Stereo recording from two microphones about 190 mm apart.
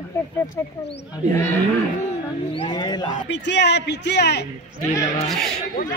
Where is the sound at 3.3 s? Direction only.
65° left (ahead or behind).